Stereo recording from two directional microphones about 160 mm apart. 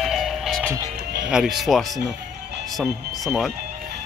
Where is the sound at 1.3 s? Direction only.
5° right (ahead or behind).